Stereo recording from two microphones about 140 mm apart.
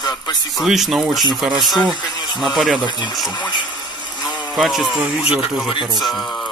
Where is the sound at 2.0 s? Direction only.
30° left (ahead or behind).